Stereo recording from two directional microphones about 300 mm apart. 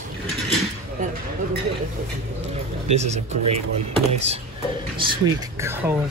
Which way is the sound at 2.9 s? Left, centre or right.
Right.